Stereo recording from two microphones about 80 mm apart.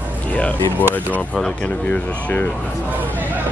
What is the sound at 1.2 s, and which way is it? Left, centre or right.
Speech, centre.